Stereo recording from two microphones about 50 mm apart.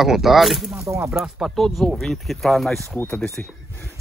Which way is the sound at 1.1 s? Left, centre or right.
Centre.